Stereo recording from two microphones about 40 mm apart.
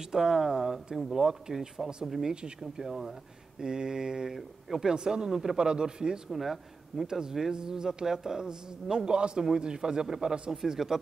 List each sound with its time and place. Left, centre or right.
0.1 s a man's voice: centre
6.3 s a man's voice: centre
7.1 s a man's voice: centre
10.5 s a man's voice: centre